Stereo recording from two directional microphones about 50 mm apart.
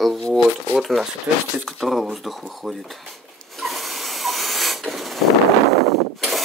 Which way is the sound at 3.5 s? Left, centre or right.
Centre.